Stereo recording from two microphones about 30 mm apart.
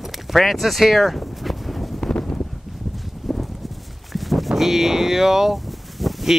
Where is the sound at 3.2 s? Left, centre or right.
Centre.